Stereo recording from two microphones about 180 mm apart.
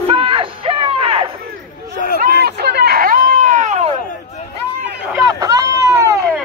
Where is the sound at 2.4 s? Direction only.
65° right (ahead or behind); by 4.0 s 40° right (ahead or behind).